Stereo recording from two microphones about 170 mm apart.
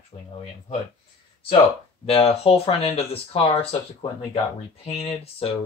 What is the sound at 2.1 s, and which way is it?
Speech, 35° left (ahead or behind).